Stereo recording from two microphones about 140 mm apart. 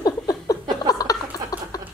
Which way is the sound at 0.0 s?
25° left (ahead or behind).